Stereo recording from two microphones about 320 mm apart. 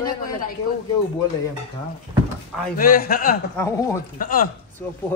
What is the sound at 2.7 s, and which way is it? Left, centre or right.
Speech, left.